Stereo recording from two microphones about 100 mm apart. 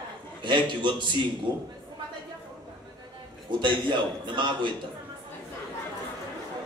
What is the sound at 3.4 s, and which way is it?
A man's voice, 50° right (ahead or behind).